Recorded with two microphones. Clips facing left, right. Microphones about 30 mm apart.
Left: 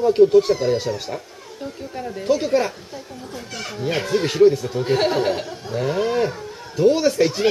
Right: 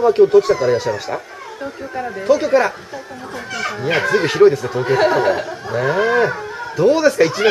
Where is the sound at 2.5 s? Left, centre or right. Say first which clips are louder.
Right 5 dB; centre.